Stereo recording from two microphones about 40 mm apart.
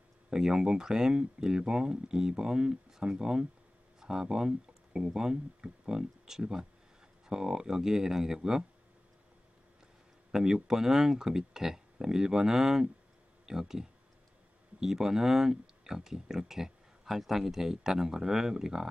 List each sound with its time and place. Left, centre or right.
0.3 s speech: centre
10.3 s speech: centre